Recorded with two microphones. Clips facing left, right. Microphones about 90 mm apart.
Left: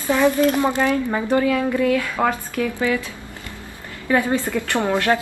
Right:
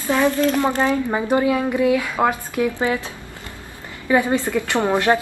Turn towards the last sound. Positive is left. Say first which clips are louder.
# right 1 dB
turn(degrees=-20)  # may be behind; listen again after turning